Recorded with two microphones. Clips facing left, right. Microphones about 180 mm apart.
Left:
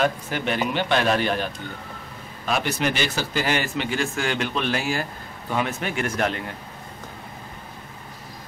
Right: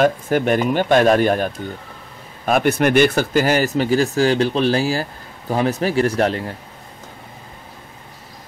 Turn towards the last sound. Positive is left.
turn(degrees=-35)  # may be behind; listen again after turning